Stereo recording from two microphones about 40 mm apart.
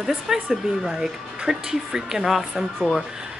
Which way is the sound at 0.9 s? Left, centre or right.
Centre.